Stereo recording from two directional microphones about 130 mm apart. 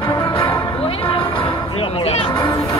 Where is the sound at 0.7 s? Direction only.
45° left (ahead or behind).